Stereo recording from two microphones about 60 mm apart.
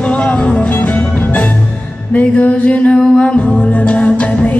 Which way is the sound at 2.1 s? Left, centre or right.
Left.